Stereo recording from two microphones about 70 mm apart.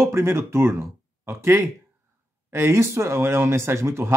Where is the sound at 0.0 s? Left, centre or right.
Right.